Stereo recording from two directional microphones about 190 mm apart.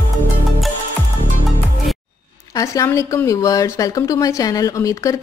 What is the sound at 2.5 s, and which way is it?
A woman's voice, 15° left (ahead or behind).